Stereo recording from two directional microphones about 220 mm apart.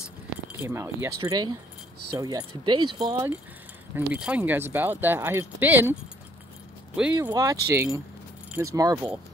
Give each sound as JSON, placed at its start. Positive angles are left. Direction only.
{"t": 0.7, "sound": "speech", "side_deg": -10}
{"t": 7.2, "sound": "speech", "side_deg": -15}